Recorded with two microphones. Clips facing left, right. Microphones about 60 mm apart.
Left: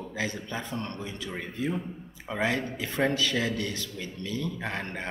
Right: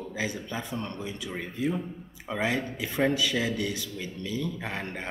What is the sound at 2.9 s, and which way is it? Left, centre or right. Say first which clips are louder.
A man's voice: right 1 dB; centre.